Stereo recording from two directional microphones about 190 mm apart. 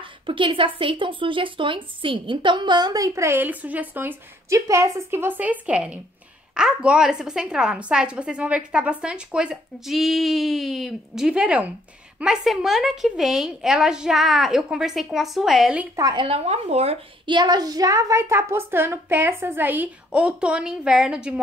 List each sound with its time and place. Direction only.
0.0 s a woman's voice: 25° right (ahead or behind); by 15.9 s 5° right (ahead or behind)
16.0 s a woman's voice: 25° right (ahead or behind); by 21.4 s 5° right (ahead or behind)